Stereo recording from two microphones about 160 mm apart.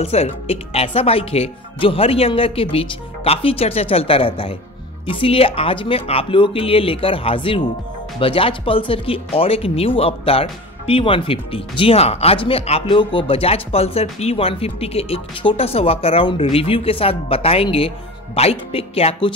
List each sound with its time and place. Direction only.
0.0 s speech: 40° left (ahead or behind)